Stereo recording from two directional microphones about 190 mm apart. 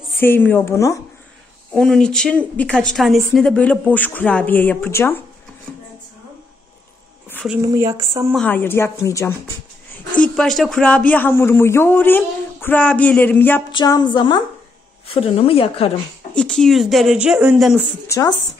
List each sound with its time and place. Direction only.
0.2 s speech: 10° left (ahead or behind)
1.7 s a woman's voice: 5° left (ahead or behind)
7.6 s speech: 20° right (ahead or behind)
8.4 s speech: 10° left (ahead or behind)
13.7 s speech: 25° left (ahead or behind)
16.3 s a woman's voice: 5° left (ahead or behind)
18.0 s speech: 15° left (ahead or behind)